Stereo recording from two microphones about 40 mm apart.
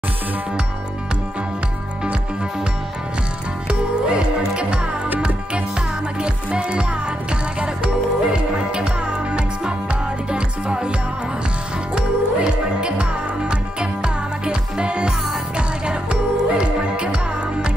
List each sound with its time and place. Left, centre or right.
3.6 s music: right
11.9 s music: right